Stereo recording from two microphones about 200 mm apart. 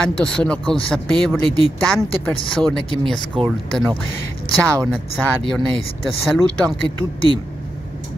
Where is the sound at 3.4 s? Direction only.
25° right (ahead or behind).